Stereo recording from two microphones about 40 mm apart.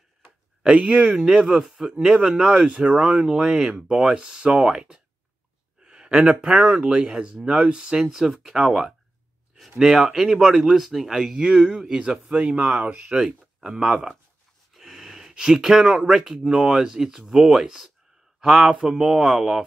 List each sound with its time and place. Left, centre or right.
0.6 s speech: right
1.1 s speech: centre
3.3 s speech: centre
12.3 s speech: right
13.2 s speech: centre
14.7 s a sound: centre
16.4 s speech: centre